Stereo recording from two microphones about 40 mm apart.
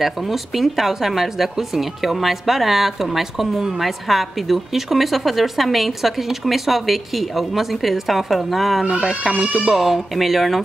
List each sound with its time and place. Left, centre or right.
0.0 s speech: centre
8.8 s speech: right
9.4 s speech: centre
9.8 s speech: centre